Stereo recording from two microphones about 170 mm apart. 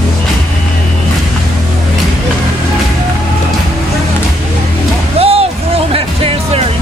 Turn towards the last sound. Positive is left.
turn(degrees=-35)  # may be behind; listen again after turning